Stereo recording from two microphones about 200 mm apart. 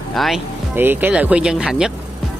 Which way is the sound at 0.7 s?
10° right (ahead or behind).